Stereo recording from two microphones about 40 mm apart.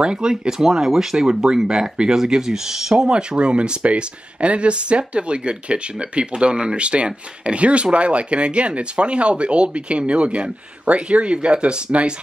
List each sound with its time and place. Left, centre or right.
0.0 s speech: right
3.1 s speech: right